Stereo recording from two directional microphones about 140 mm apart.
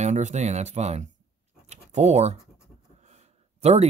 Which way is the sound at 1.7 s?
50° right (ahead or behind).